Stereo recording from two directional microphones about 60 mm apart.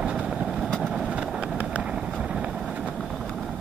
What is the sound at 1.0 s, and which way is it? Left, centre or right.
Vehicle, centre.